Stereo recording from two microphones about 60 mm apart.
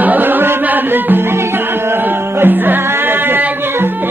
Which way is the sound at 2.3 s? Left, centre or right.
Right.